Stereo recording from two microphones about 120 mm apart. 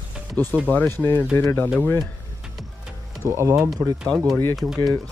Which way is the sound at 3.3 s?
25° right (ahead or behind).